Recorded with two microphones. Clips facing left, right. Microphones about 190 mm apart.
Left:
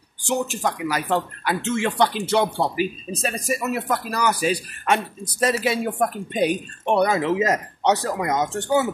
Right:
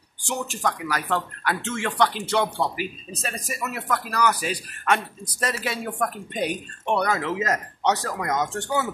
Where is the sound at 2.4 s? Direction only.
30° left (ahead or behind).